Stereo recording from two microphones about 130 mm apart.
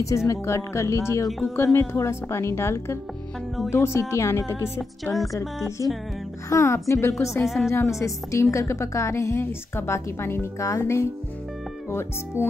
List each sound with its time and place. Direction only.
0.3 s a woman's voice: 25° left (ahead or behind)
5.8 s a woman's voice: 25° left (ahead or behind)
7.4 s speech: centre (ahead or behind)
7.7 s a woman's voice: 25° left (ahead or behind)